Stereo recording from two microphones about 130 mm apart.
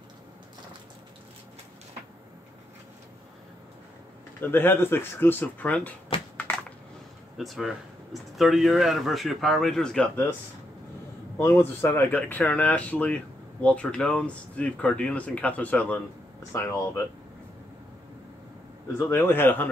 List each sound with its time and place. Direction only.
4.4 s speech: 15° left (ahead or behind)
7.3 s speech: centre (ahead or behind)
11.3 s speech: 20° left (ahead or behind)
16.5 s speech: 25° left (ahead or behind)
18.9 s speech: 20° left (ahead or behind)